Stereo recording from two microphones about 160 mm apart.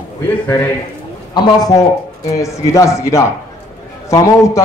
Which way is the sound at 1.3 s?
25° left (ahead or behind).